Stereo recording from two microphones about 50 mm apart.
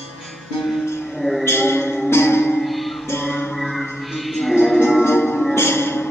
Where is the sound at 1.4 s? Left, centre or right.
Left.